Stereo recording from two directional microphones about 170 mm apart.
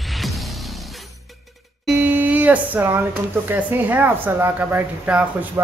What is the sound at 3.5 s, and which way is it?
Speech, 10° right (ahead or behind).